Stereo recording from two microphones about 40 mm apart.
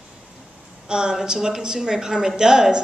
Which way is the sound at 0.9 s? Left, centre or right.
Right.